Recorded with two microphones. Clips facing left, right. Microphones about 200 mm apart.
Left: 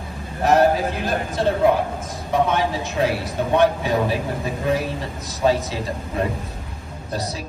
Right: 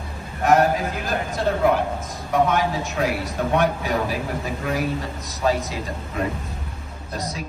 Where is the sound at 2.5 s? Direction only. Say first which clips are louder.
Left 1 dB; 30° left (ahead or behind).